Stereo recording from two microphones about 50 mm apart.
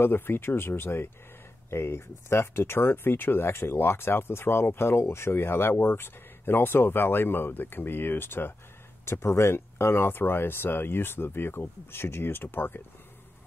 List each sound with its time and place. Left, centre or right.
0.0 s speech: left
9.0 s speech: left